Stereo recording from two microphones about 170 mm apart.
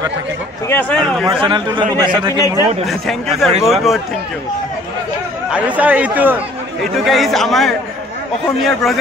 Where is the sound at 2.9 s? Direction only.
Centre (ahead or behind).